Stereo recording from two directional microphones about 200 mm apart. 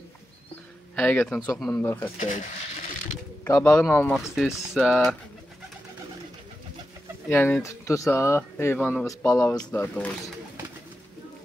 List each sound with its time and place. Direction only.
0.9 s speech: 5° left (ahead or behind)
2.1 s speech: 40° left (ahead or behind)
3.4 s speech: 15° left (ahead or behind)
3.7 s speech: 5° left (ahead or behind)
7.2 s speech: 10° left (ahead or behind)
8.7 s speech: centre (ahead or behind)
9.4 s speech: 15° left (ahead or behind)